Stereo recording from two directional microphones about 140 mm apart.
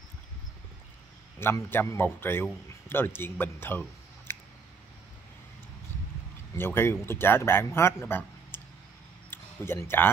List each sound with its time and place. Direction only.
1.4 s speech: 15° left (ahead or behind)
4.3 s a sound: 15° left (ahead or behind)
6.6 s speech: 15° left (ahead or behind)